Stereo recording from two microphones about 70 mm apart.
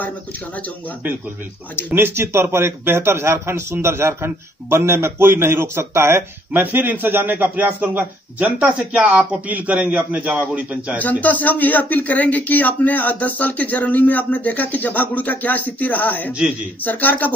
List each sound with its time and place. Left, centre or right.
2.0 s a man's voice: right
6.6 s a man's voice: right
11.0 s speech: left